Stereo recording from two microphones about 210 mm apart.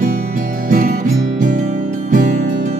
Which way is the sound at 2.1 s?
35° right (ahead or behind).